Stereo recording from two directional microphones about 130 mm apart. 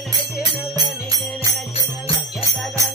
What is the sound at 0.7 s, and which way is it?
Music, 30° right (ahead or behind).